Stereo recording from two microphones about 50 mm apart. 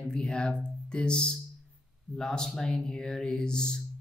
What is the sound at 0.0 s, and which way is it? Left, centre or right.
Speech, centre.